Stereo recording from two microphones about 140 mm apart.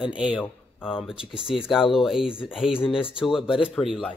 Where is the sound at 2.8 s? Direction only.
40° left (ahead or behind).